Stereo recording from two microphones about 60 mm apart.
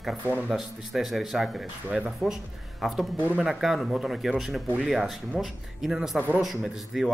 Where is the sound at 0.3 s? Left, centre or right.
Right.